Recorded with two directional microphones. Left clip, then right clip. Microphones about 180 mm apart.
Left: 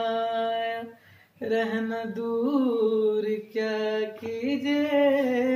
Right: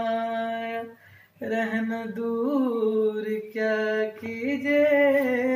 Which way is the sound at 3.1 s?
20° left (ahead or behind).